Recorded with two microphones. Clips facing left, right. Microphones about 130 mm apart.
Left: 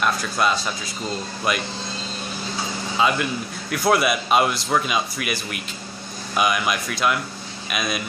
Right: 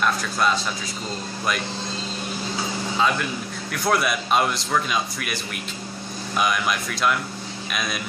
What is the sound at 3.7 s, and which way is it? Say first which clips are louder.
Speech: left 3 dB; 5° left (ahead or behind).